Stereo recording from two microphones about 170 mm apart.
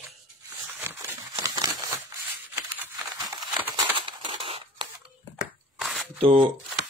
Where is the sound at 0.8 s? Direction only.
15° right (ahead or behind).